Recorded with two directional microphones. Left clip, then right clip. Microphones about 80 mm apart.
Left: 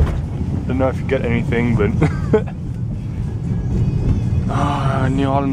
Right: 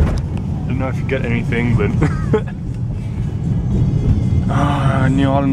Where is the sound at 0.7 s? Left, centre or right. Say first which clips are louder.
Left 4 dB; left.